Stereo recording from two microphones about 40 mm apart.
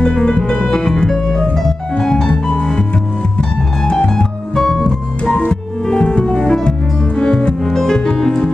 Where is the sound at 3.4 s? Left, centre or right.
Centre.